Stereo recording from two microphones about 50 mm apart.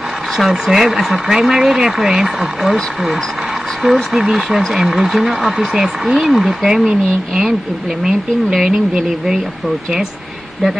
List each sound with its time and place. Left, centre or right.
0.4 s speech: centre
8.0 s speech: centre